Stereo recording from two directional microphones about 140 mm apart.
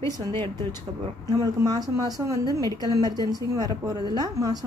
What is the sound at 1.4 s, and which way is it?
Speech, 25° right (ahead or behind).